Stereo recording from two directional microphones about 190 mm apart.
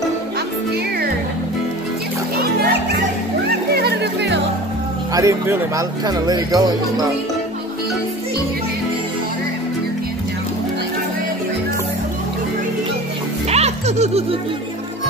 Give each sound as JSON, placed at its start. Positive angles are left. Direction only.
{"t": 3.7, "sound": "music", "side_deg": -60}
{"t": 5.1, "sound": "speech", "side_deg": -15}
{"t": 13.5, "sound": "music", "side_deg": -35}